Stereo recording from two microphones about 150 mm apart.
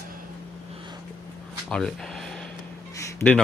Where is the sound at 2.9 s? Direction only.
20° left (ahead or behind).